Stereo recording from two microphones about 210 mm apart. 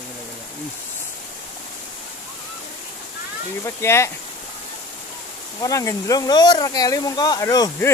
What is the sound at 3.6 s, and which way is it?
Speech, 15° left (ahead or behind).